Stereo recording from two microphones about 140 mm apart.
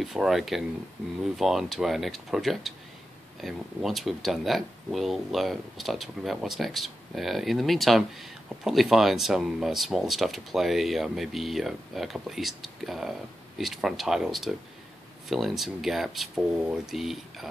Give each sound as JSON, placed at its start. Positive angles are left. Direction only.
{"t": 0.0, "sound": "speech", "side_deg": -5}